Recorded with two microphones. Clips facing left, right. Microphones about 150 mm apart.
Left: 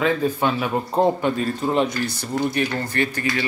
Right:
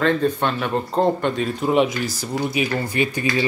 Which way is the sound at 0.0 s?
5° left (ahead or behind).